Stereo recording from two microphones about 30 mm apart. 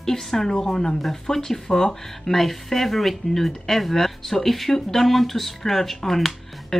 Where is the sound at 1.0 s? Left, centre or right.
Centre.